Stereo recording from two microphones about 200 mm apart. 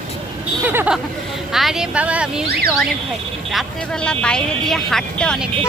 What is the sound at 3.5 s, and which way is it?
Speech, centre (ahead or behind).